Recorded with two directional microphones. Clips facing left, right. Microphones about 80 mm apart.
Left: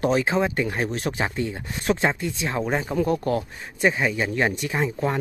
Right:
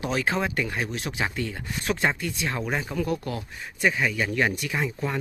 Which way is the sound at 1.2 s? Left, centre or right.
Left.